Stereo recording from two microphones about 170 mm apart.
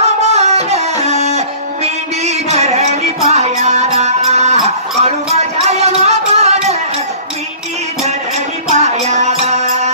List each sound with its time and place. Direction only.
0.0 s music: 40° right (ahead or behind)
8.7 s music: 40° right (ahead or behind)